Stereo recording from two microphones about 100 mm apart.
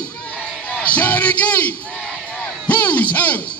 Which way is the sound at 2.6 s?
15° left (ahead or behind).